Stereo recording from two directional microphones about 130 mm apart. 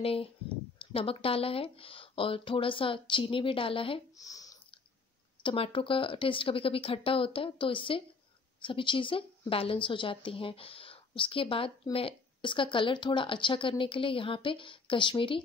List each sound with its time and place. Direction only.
0.0 s speech: 45° left (ahead or behind)
4.2 s a sound: 25° left (ahead or behind)
5.4 s a woman's voice: 40° left (ahead or behind)